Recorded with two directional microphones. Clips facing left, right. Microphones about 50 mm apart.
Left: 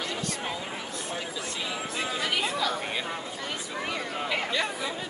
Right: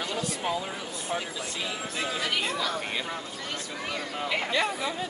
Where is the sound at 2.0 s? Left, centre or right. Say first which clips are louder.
Even; centre.